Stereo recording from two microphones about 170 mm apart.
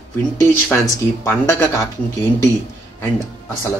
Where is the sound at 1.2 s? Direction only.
15° left (ahead or behind).